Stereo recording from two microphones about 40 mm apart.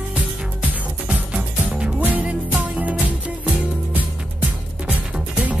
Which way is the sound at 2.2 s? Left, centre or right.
Right.